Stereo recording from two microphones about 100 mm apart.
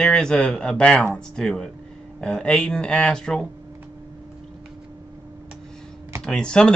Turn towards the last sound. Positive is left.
turn(degrees=10)  # may be behind; listen again after turning